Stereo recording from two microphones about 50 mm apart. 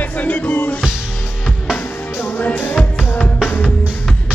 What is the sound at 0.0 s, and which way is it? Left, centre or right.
Music, left.